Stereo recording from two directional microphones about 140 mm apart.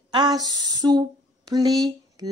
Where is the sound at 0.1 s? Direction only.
30° right (ahead or behind).